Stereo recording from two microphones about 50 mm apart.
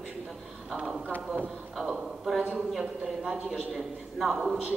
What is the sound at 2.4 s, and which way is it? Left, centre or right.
Speech, right.